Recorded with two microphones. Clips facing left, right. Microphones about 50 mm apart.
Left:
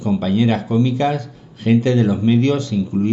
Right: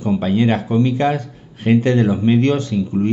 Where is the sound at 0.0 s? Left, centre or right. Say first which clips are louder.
Right 1 dB; right.